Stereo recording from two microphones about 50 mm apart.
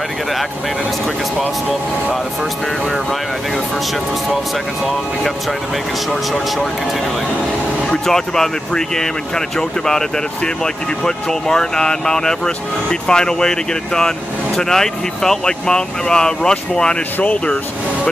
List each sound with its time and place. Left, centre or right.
7.9 s speech: centre